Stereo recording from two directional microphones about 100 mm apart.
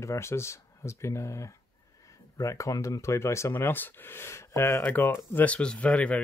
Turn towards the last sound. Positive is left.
turn(degrees=10)  # may be behind; listen again after turning